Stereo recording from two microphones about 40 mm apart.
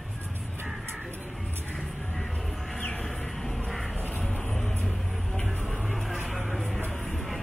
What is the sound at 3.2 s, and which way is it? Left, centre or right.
Music, centre.